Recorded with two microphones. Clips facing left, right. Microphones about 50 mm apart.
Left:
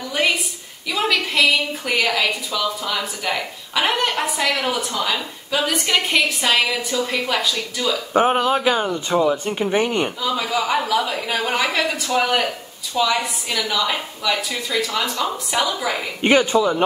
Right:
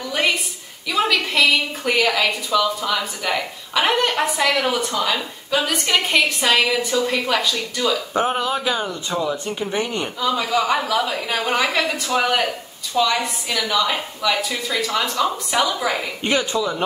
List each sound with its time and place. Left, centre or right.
0.1 s a sound: centre
0.8 s a woman's voice: centre
8.1 s speech: left
10.2 s a woman's voice: centre
16.2 s speech: left